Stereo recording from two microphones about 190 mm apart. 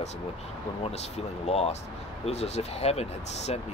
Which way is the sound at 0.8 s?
35° left (ahead or behind).